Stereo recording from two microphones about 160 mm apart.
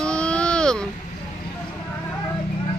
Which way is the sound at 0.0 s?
5° left (ahead or behind).